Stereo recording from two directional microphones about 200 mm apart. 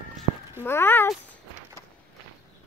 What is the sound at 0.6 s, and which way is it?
Speech, 10° left (ahead or behind).